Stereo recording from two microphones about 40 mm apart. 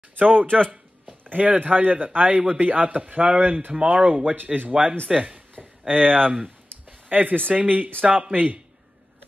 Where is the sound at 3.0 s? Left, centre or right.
Right.